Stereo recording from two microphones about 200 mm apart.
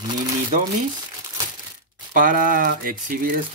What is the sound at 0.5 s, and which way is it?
Speech, 40° right (ahead or behind).